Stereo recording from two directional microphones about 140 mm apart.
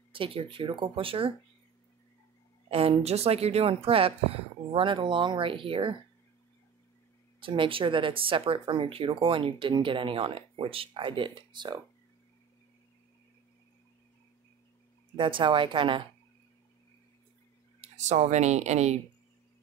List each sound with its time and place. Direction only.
0.1 s speech: 40° right (ahead or behind)
2.7 s speech: 45° right (ahead or behind)
7.3 s speech: 35° right (ahead or behind)
15.1 s speech: 35° right (ahead or behind)
17.7 s speech: 50° right (ahead or behind)